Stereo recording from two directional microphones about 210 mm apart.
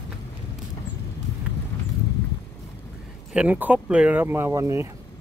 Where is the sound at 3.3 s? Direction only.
5° right (ahead or behind).